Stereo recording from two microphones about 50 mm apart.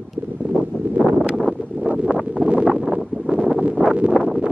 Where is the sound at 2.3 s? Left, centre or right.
Right.